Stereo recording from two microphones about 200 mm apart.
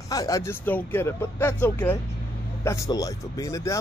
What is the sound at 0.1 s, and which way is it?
Speech, 15° left (ahead or behind).